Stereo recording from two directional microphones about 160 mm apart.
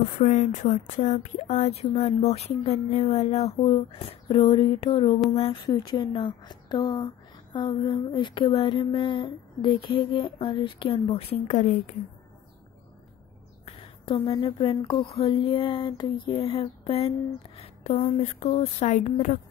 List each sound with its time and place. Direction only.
0.2 s speech: 50° left (ahead or behind)
5.7 s a woman's voice: 25° left (ahead or behind); by 11.9 s 50° left (ahead or behind)
13.7 s a sound: 40° left (ahead or behind)
14.3 s speech: 30° left (ahead or behind); by 19.4 s 50° left (ahead or behind)